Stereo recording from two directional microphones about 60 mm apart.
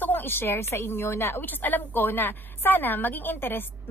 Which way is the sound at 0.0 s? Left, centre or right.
Left.